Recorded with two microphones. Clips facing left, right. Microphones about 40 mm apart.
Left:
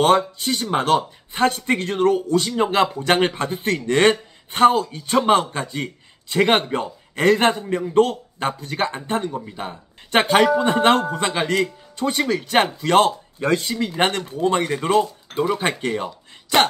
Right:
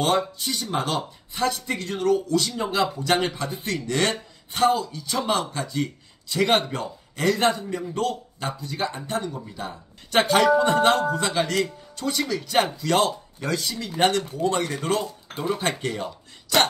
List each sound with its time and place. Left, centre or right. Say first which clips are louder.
0.0 s speech: left 6 dB; left